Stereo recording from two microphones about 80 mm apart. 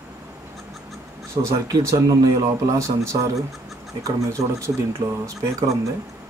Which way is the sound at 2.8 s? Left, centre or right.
Right.